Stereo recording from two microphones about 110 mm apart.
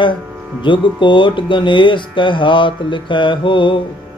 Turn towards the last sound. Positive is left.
turn(degrees=50)  # may be behind; listen again after turning